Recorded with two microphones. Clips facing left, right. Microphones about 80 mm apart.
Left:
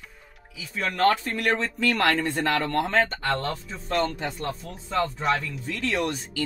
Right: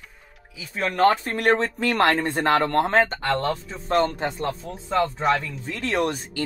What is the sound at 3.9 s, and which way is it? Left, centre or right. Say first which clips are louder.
Speech: right 4 dB; right.